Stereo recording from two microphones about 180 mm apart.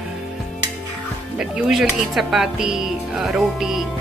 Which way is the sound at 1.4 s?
5° right (ahead or behind).